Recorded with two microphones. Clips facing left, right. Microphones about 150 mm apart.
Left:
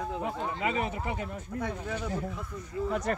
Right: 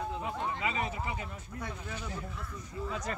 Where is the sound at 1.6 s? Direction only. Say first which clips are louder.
Left 7 dB; 65° left (ahead or behind).